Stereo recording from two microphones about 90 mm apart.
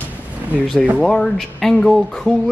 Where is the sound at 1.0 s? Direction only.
5° left (ahead or behind).